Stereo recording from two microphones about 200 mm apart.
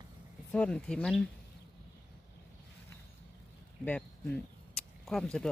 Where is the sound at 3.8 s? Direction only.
5° left (ahead or behind).